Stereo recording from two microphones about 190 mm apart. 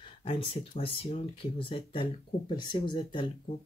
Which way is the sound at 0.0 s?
25° left (ahead or behind).